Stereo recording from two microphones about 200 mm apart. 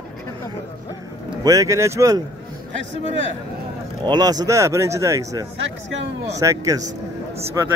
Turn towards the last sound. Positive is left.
turn(degrees=-15)  # may be behind; listen again after turning